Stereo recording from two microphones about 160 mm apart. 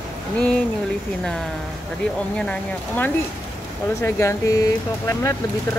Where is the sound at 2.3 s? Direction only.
5° left (ahead or behind).